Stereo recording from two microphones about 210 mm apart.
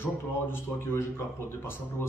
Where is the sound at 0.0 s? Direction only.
10° left (ahead or behind).